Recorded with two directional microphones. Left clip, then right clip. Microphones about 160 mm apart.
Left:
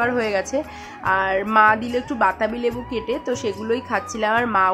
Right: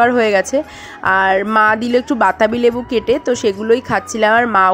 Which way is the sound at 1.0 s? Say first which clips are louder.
Right 7 dB; 35° right (ahead or behind).